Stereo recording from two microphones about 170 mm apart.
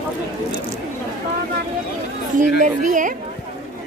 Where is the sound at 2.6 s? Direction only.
50° right (ahead or behind).